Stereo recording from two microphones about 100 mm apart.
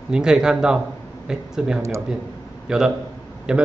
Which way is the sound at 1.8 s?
30° right (ahead or behind).